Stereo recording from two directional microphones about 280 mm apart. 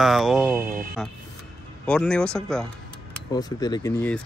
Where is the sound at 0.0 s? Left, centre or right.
Centre.